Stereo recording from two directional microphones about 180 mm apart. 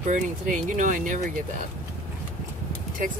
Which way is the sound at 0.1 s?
45° right (ahead or behind).